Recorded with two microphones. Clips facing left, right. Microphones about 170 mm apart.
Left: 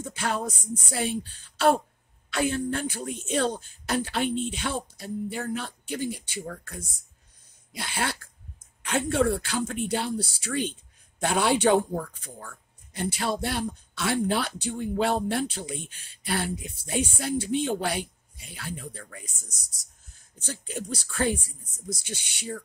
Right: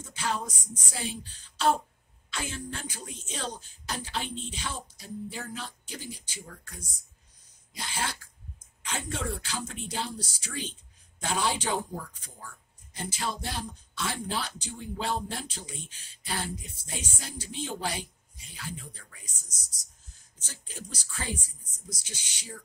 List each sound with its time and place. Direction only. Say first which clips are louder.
0.0 s speech: left 4 dB; 60° left (ahead or behind)